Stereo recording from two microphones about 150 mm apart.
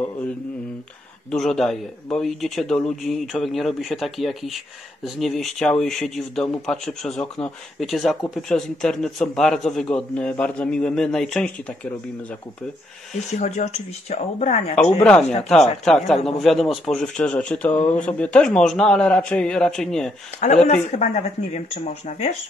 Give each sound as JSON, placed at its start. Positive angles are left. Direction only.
{"t": 1.3, "sound": "a man's voice", "side_deg": 5}
{"t": 13.3, "sound": "speech", "side_deg": 55}
{"t": 15.0, "sound": "a man's voice", "side_deg": 10}
{"t": 20.3, "sound": "speech", "side_deg": 50}